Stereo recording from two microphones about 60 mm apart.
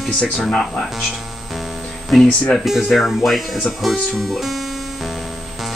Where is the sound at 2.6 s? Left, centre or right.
Centre.